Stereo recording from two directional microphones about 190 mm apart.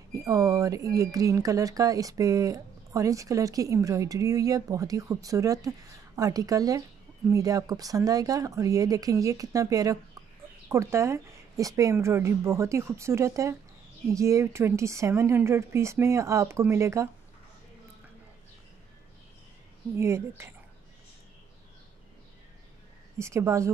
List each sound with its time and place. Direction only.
0.1 s speech: 15° right (ahead or behind)
20.0 s speech: 15° right (ahead or behind)
23.1 s speech: 15° right (ahead or behind)